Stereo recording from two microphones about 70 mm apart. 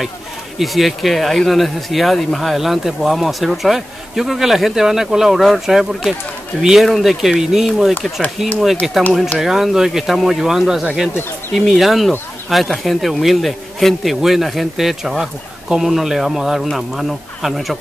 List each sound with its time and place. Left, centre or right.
0.6 s speech: centre